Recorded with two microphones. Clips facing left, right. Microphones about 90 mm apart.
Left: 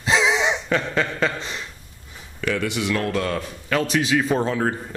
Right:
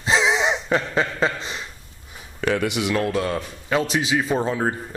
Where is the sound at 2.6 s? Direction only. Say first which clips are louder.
Right 1 dB; 15° right (ahead or behind).